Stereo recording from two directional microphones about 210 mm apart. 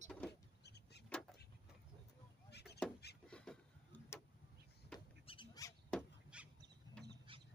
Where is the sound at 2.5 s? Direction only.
50° left (ahead or behind).